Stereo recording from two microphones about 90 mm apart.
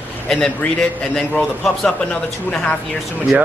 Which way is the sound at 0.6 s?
15° left (ahead or behind).